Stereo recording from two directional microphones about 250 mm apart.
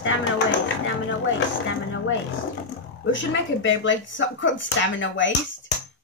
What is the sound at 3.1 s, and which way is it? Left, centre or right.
Speech, left.